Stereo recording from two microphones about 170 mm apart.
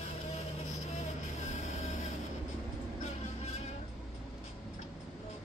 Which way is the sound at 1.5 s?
45° left (ahead or behind).